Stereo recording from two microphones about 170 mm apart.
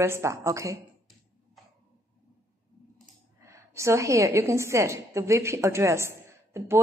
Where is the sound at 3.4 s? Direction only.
15° right (ahead or behind).